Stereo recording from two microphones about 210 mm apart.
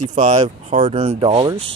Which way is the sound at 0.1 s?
35° right (ahead or behind).